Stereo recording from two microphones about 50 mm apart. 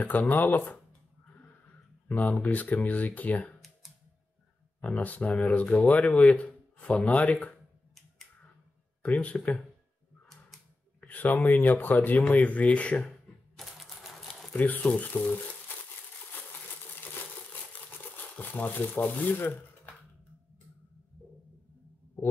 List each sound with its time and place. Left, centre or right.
0.0 s speech: left
2.0 s speech: left
4.8 s speech: left
9.0 s speech: left
11.0 s a sound: left
11.4 s speech: left
13.6 s typewriter: centre
14.5 s speech: left
17.7 s a sound: left